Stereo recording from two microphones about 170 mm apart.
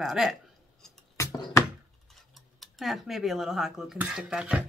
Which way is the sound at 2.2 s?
Centre (ahead or behind).